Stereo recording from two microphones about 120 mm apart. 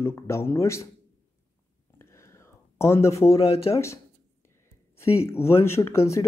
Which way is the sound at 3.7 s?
25° left (ahead or behind).